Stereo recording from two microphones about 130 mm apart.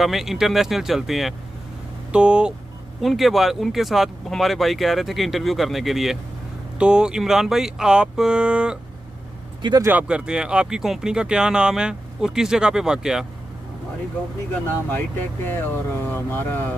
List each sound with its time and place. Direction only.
0.0 s speech: centre (ahead or behind)
9.6 s a man's voice: 35° right (ahead or behind)
9.8 s speech: 10° right (ahead or behind)
14.5 s speech: 15° left (ahead or behind)